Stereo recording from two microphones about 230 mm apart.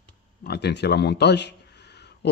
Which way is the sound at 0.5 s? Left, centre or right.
Left.